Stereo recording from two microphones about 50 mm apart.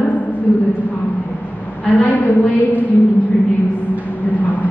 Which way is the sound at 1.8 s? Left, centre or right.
Left.